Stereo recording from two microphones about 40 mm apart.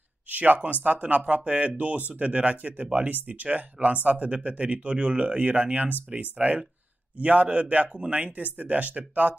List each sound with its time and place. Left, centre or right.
0.3 s speech: right